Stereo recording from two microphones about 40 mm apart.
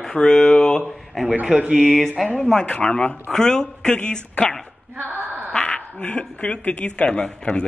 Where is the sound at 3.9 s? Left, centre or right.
Left.